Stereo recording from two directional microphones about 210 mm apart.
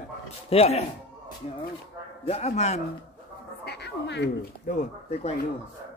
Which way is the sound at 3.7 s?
50° left (ahead or behind).